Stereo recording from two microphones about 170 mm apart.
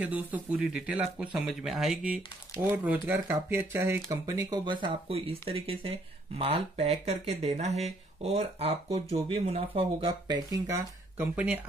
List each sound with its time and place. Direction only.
0.0 s speech: 10° right (ahead or behind)